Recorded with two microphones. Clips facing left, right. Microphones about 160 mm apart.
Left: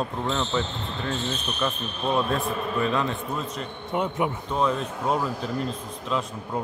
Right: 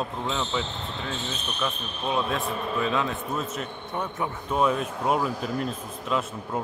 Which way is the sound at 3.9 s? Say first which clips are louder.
Left 6 dB; 15° left (ahead or behind).